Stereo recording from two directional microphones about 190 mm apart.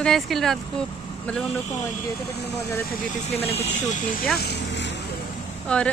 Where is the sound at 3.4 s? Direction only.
30° left (ahead or behind).